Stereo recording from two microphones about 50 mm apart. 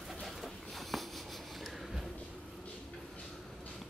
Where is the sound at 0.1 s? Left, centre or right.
Centre.